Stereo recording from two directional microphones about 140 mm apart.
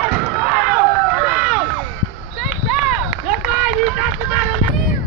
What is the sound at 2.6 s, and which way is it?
Run, 10° right (ahead or behind).